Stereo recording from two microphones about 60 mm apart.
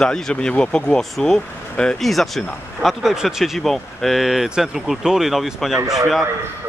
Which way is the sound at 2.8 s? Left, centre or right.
Centre.